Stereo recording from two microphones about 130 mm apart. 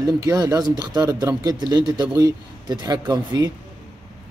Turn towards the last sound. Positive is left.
turn(degrees=-30)  # may be behind; listen again after turning